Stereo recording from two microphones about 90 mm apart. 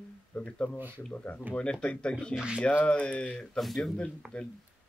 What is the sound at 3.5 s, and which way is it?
Speech, centre (ahead or behind).